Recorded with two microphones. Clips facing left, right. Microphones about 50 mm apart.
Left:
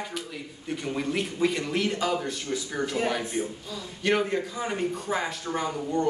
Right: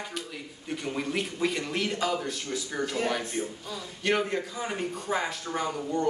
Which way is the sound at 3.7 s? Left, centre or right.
Centre.